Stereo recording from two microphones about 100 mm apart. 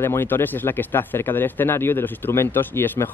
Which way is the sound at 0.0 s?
25° left (ahead or behind).